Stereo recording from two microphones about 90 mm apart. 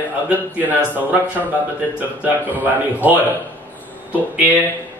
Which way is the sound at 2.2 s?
20° right (ahead or behind).